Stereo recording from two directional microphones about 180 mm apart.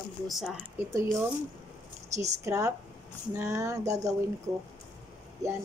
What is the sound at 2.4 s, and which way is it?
Speech, 15° right (ahead or behind).